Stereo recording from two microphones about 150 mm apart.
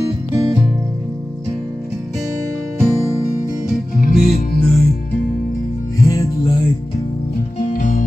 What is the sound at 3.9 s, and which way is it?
Music, 80° left.